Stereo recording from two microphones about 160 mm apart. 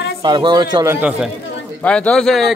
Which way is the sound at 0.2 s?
30° right (ahead or behind).